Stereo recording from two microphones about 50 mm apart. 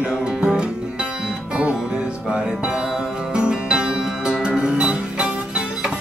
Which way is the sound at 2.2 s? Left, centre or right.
Centre.